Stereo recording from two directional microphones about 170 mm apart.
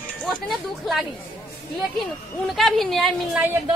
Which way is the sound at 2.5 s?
Centre (ahead or behind).